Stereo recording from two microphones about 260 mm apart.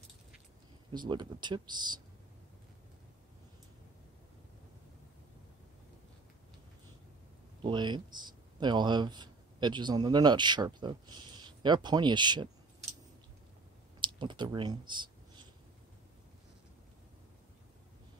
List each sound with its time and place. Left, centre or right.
0.9 s speech: centre
7.6 s speech: centre
14.0 s speech: centre